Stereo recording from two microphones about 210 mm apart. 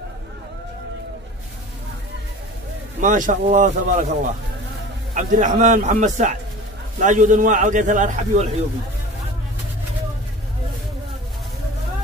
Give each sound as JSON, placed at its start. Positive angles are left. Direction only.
{"t": 3.0, "sound": "a man's voice", "side_deg": -40}